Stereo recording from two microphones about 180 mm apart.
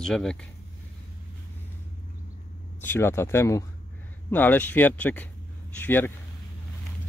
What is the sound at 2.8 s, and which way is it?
Speech, 15° left (ahead or behind).